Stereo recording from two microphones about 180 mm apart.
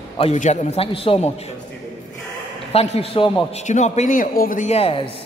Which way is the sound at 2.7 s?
35° left (ahead or behind).